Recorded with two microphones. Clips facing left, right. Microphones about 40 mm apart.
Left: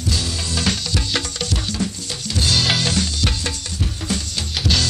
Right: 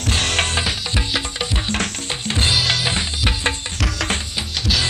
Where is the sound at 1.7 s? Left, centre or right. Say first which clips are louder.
Right 2 dB; right.